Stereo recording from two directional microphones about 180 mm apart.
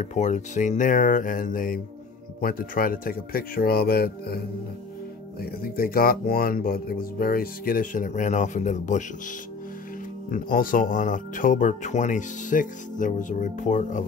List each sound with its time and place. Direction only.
0.0 s speech: 40° left (ahead or behind); by 4.4 s 60° left (ahead or behind)
5.4 s speech: 55° left (ahead or behind)
10.3 s speech: 50° left (ahead or behind)